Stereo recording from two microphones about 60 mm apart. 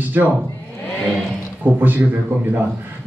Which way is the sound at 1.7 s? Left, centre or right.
Right.